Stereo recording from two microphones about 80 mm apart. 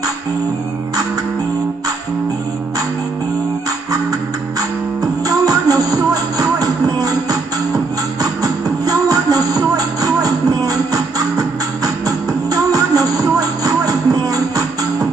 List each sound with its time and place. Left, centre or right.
5.2 s music: right